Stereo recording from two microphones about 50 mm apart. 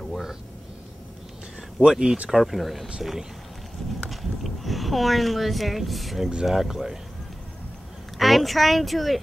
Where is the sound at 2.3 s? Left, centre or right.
Centre.